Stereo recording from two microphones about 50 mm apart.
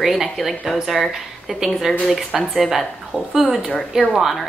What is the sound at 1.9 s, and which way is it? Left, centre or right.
Speech, centre.